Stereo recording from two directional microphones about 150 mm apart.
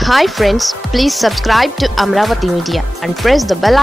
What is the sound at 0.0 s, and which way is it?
Speech, centre (ahead or behind).